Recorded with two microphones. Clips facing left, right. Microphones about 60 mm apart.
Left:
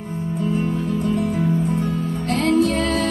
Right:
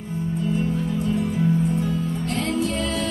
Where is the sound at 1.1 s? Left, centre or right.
Left.